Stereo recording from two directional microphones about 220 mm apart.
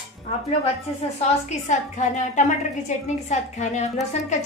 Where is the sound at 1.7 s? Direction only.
35° left (ahead or behind).